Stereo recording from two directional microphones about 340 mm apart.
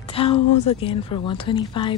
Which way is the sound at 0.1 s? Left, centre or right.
Centre.